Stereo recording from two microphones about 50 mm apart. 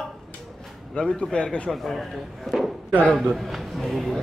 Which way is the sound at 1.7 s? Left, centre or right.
Centre.